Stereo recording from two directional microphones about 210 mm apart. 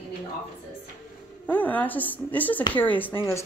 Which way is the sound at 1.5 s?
10° left (ahead or behind).